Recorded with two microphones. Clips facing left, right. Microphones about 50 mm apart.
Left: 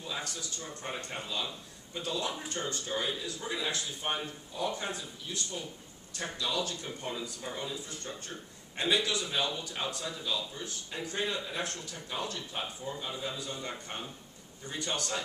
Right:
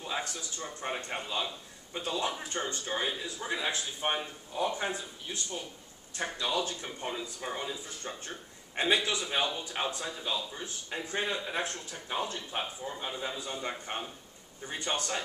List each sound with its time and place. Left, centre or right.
0.0 s speech: right